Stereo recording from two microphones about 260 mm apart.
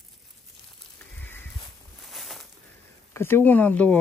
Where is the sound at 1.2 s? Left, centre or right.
Centre.